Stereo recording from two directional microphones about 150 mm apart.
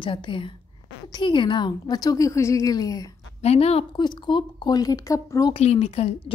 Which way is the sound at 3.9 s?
30° left (ahead or behind).